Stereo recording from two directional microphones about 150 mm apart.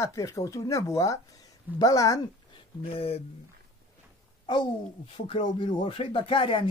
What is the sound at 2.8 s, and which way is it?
Speech, 40° left (ahead or behind).